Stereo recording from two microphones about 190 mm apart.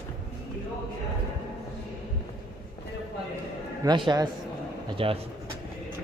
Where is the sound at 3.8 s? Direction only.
25° right (ahead or behind).